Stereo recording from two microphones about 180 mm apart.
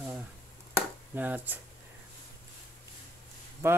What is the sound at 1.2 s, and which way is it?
Speech, 10° right (ahead or behind).